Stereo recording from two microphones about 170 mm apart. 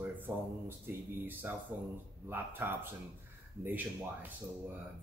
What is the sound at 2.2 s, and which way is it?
Speech, 10° right (ahead or behind).